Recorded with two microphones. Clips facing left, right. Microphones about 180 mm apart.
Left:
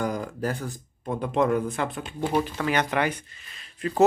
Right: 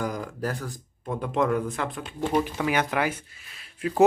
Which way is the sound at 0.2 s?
25° left (ahead or behind).